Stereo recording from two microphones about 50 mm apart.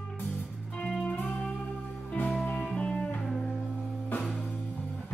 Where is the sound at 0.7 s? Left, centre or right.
Centre.